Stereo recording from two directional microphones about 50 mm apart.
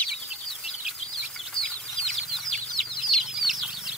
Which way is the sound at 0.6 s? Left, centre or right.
Centre.